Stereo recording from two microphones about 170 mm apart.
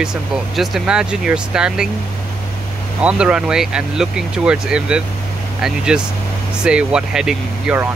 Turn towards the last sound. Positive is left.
turn(degrees=-5)  # may be behind; listen again after turning